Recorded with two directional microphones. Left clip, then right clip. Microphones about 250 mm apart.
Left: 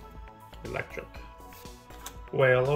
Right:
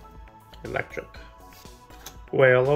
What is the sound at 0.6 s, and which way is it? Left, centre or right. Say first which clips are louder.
Speech: right 6 dB; centre.